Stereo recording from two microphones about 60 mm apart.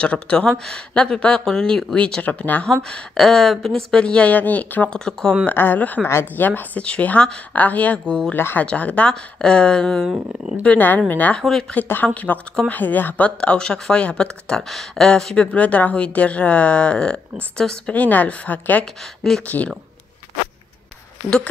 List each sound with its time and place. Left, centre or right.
0.0 s a woman's voice: centre
2.2 s a woman's voice: left
2.8 s speech: centre
4.9 s speech: centre
5.5 s a woman's voice: left
8.4 s speech: left
8.6 s a woman's voice: left
10.6 s a woman's voice: left
11.4 s speech: centre
11.9 s a woman's voice: left
13.4 s speech: centre
17.9 s a woman's voice: left
18.9 s speech: centre
19.4 s a woman's voice: left